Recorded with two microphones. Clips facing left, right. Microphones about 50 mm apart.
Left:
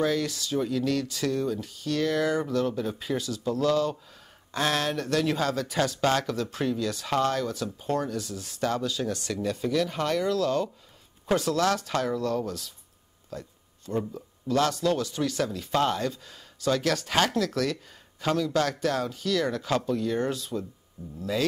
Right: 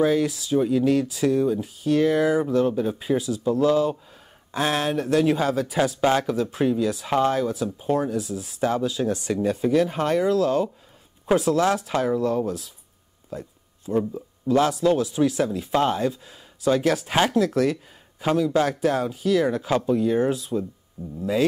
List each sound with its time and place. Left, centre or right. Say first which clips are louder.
0.0 s speech: right 6 dB; centre